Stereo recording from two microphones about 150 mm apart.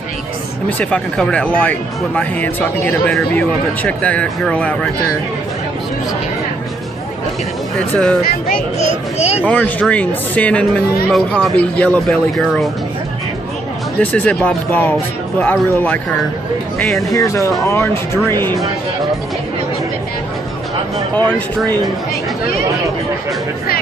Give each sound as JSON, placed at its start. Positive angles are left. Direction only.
{"t": 0.7, "sound": "speech", "side_deg": 10}
{"t": 7.9, "sound": "speech", "side_deg": 5}
{"t": 8.2, "sound": "speech", "side_deg": 70}
{"t": 9.5, "sound": "speech", "side_deg": 10}
{"t": 13.9, "sound": "speech", "side_deg": 10}
{"t": 17.1, "sound": "speech", "side_deg": 20}
{"t": 21.1, "sound": "speech", "side_deg": 10}